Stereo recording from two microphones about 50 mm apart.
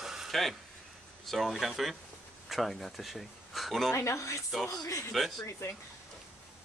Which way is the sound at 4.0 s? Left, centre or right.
Left.